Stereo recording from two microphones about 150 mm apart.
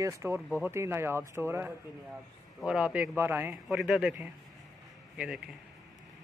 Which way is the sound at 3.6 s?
5° right (ahead or behind).